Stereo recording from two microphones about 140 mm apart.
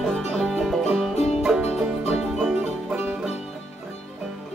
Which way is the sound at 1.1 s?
50° left (ahead or behind).